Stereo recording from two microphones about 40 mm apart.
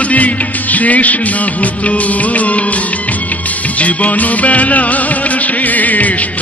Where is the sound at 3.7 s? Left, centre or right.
Left.